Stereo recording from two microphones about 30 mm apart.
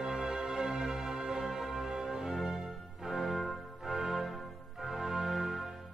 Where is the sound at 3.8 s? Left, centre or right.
Centre.